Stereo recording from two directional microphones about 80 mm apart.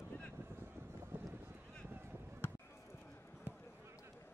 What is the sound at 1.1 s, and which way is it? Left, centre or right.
Boat, centre.